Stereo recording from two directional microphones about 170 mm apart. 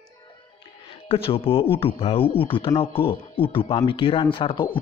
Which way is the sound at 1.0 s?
35° left (ahead or behind).